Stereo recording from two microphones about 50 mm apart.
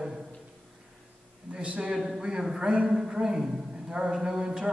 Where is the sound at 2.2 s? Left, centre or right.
Centre.